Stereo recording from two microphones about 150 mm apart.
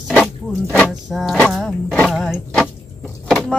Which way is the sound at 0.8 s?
Centre (ahead or behind).